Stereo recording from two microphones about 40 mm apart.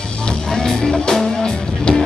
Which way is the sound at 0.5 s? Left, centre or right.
Centre.